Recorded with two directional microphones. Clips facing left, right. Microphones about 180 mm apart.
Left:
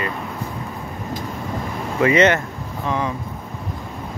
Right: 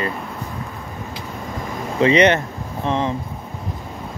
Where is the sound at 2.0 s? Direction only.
20° right (ahead or behind).